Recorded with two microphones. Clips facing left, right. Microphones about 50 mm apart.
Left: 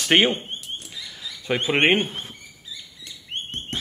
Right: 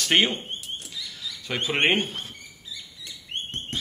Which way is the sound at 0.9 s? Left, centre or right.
Left.